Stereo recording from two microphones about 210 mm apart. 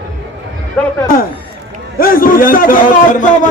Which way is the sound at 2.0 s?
40° left (ahead or behind).